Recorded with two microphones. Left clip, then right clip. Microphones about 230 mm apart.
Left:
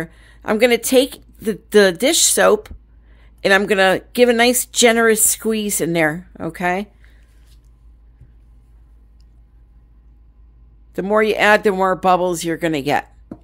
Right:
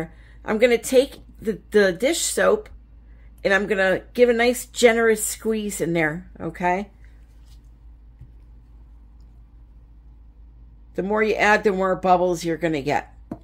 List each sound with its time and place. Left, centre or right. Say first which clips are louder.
0.0 s speech: left 4 dB; left
10.9 s speech: left 5 dB; left